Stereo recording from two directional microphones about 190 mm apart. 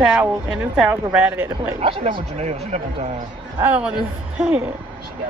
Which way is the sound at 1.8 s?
30° right (ahead or behind).